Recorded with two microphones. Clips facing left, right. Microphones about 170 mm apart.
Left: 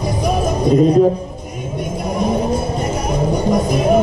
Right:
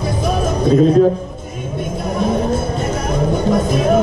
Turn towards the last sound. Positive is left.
turn(degrees=10)  # may be behind; listen again after turning